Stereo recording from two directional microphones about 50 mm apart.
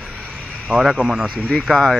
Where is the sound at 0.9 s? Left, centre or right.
Centre.